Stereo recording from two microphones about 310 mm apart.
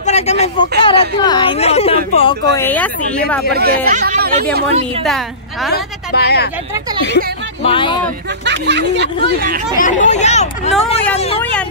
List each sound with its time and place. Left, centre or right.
0.0 s a sound: left
2.1 s a woman's voice: centre
3.5 s speech: right
5.0 s a woman's voice: centre
5.7 s speech: left
7.6 s speech: centre
8.5 s speech: right
9.8 s speech: left